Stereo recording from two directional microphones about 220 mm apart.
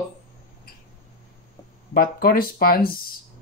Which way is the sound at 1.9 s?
40° left (ahead or behind).